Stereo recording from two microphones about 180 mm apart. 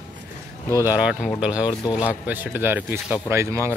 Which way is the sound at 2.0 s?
10° right (ahead or behind).